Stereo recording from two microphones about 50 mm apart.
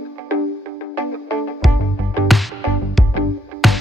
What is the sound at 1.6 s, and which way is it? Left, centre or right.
Music, centre.